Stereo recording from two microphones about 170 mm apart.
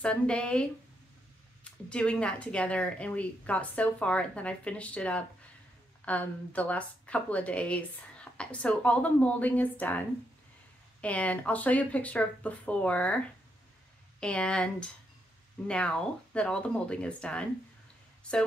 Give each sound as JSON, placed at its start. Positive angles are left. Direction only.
{"t": 0.0, "sound": "a woman's voice", "side_deg": 5}
{"t": 14.2, "sound": "a woman's voice", "side_deg": 5}